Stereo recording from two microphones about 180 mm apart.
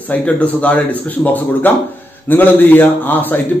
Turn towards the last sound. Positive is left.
turn(degrees=10)  # may be behind; listen again after turning